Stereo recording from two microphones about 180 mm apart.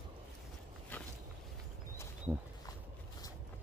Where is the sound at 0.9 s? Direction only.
10° left (ahead or behind).